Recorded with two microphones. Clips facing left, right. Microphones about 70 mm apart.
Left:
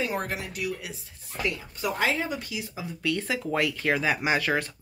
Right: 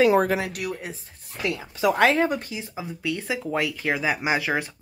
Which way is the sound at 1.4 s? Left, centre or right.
Right.